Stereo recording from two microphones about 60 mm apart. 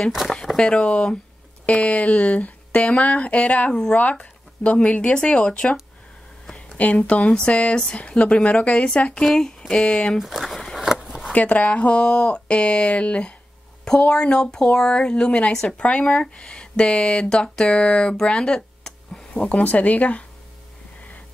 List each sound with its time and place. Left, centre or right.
0.1 s speech: centre
1.7 s speech: left
6.8 s speech: left
7.2 s a woman's voice: centre
10.1 s speech: centre
10.8 s a sound: centre
11.1 s zipper: centre
11.3 s a woman's voice: left
19.3 s speech: left